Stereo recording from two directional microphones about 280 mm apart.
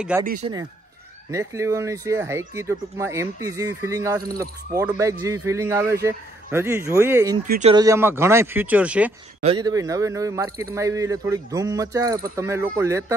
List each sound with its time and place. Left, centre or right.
0.2 s speech: right
1.3 s speech: centre
7.4 s speech: right
7.7 s speech: centre
9.4 s speech: centre